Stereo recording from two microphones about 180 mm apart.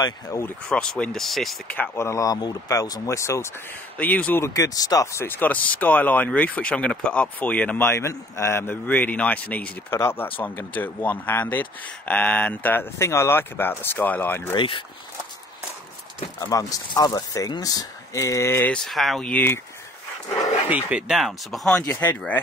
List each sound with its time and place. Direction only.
0.0 s speech: 20° left (ahead or behind)
0.7 s speech: 5° left (ahead or behind)
14.5 s speech: 25° left (ahead or behind)
16.3 s speech: 20° left (ahead or behind)
20.7 s speech: 5° right (ahead or behind)